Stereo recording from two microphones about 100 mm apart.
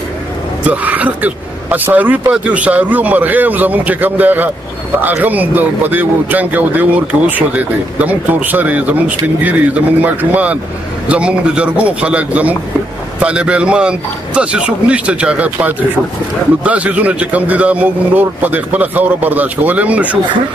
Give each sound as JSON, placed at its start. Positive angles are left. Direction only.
{"t": 0.7, "sound": "speech", "side_deg": -15}